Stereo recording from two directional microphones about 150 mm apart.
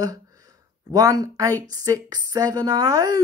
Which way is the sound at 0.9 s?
25° right (ahead or behind).